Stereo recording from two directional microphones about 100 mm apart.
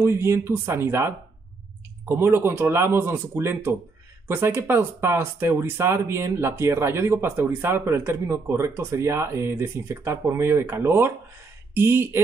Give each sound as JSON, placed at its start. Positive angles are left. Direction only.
{"t": 0.0, "sound": "speech", "side_deg": -25}